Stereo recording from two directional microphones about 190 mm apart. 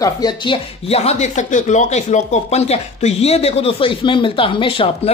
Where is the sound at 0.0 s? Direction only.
20° left (ahead or behind).